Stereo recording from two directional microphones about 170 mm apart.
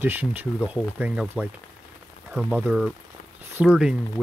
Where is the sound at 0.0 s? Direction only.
10° right (ahead or behind).